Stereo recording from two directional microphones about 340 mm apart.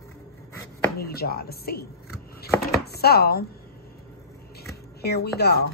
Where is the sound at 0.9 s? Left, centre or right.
Left.